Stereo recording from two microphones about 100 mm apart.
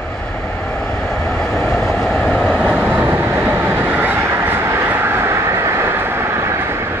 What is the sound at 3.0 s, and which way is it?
Vehicle, 25° right (ahead or behind).